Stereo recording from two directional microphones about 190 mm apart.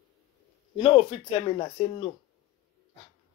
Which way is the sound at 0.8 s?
30° left (ahead or behind).